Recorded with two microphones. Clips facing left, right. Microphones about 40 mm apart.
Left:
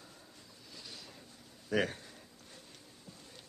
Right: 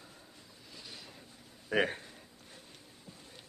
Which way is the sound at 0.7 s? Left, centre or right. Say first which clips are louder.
Right 1 dB; centre.